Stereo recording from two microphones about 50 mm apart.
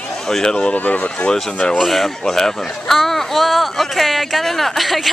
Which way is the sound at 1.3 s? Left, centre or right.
Centre.